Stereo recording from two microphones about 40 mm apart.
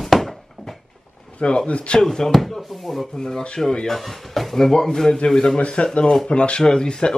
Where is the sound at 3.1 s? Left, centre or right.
Centre.